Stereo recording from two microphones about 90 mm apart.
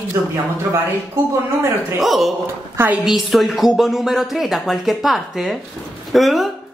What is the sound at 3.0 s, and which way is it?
A woman's voice, centre (ahead or behind).